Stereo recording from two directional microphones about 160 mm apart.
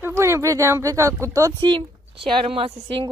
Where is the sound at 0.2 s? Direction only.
20° right (ahead or behind).